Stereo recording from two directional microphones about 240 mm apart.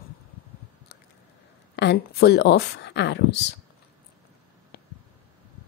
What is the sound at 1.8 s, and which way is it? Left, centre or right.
A woman's voice, left.